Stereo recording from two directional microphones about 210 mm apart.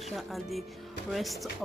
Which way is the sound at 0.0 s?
Centre (ahead or behind).